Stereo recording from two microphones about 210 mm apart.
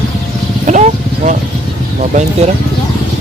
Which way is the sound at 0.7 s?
35° right (ahead or behind).